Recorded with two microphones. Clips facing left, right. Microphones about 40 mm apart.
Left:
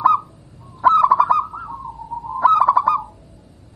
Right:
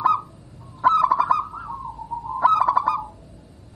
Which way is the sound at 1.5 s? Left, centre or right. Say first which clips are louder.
Left 2 dB; centre.